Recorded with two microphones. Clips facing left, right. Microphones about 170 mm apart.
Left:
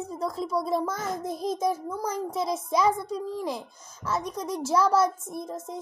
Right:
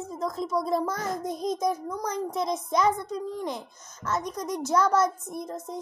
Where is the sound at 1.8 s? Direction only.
5° left (ahead or behind).